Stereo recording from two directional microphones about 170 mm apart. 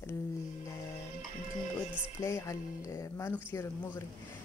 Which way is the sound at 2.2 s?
20° left (ahead or behind).